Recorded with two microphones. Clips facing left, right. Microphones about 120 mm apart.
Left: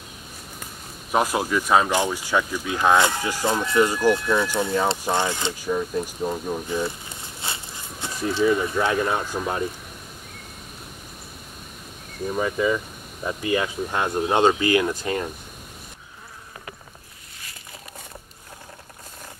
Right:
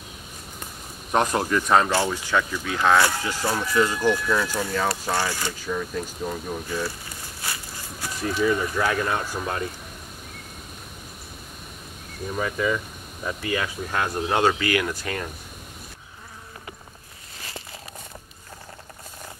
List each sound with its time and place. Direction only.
1.1 s speech: 5° left (ahead or behind)
12.4 s speech: 15° left (ahead or behind)